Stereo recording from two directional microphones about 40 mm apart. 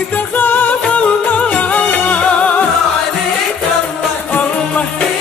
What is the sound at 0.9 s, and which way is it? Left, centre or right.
Music, left.